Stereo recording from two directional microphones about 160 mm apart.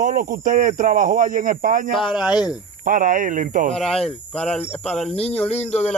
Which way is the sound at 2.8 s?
55° right (ahead or behind).